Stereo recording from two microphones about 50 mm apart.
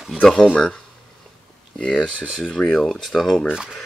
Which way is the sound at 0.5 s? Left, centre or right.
Centre.